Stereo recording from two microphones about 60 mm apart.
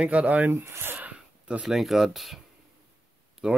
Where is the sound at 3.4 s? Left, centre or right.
Centre.